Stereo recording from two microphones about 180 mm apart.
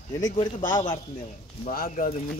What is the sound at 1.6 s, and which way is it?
Speech, 50° left (ahead or behind).